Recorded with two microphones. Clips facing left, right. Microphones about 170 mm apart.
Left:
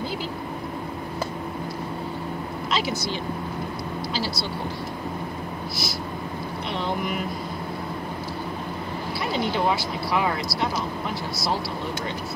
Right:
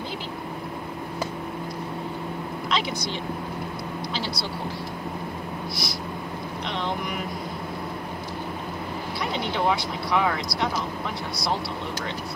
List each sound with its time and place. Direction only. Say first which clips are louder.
2.7 s a woman's voice: left 2 dB; 5° left (ahead or behind)
9.3 s speech: left 1 dB; 5° left (ahead or behind)